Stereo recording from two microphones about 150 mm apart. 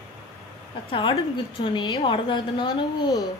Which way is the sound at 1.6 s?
30° left (ahead or behind).